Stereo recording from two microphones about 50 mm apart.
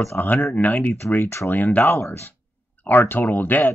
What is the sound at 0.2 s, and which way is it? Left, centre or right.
Speech, left.